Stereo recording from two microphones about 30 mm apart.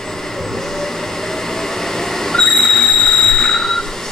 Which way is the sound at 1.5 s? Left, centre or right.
Centre.